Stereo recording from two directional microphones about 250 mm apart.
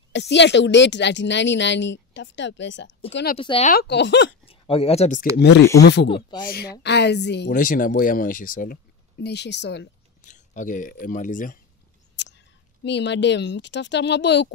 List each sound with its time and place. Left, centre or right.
0.1 s speech: left
3.3 s speech: left
3.7 s speech: left
4.5 s speech: left
5.8 s speech: left
6.0 s speech: left
6.4 s speech: left
10.2 s speech: left
12.2 s a sound: left
12.8 s speech: left